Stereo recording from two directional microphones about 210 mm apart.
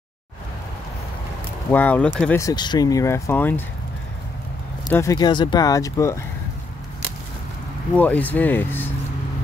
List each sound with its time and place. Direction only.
1.7 s speech: 5° left (ahead or behind)
2.4 s speech: 20° left (ahead or behind)
4.8 s speech: 15° left (ahead or behind)
7.9 s speech: 5° left (ahead or behind)